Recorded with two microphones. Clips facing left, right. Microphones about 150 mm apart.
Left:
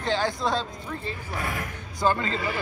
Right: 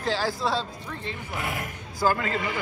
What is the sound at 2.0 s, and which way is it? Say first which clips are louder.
Speech: even; 5° right (ahead or behind).